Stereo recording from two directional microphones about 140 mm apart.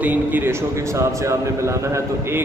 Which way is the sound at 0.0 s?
10° right (ahead or behind).